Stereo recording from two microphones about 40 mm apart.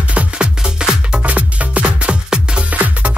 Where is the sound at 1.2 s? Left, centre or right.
Right.